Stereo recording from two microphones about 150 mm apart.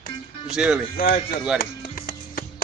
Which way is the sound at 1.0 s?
75° left (ahead or behind).